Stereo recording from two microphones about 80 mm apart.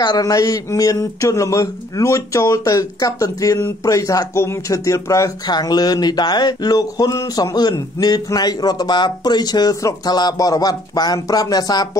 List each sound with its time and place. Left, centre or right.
0.0 s speech: left
5.5 s speech: left